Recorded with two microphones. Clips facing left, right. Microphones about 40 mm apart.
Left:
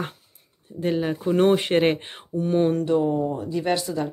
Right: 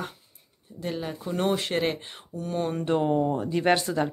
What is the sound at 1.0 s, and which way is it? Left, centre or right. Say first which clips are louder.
Speech: left 8 dB; left.